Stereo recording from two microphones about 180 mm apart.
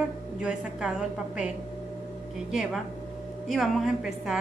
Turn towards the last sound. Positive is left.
turn(degrees=-5)  # may be behind; listen again after turning